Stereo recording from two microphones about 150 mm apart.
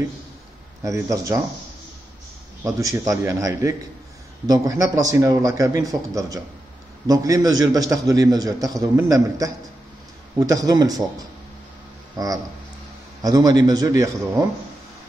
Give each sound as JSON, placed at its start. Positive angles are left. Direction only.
{"t": 0.8, "sound": "a man's voice", "side_deg": -20}
{"t": 2.6, "sound": "a man's voice", "side_deg": -20}
{"t": 10.5, "sound": "a man's voice", "side_deg": -25}